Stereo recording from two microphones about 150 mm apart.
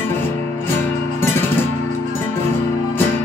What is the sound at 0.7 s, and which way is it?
Music, 15° left (ahead or behind).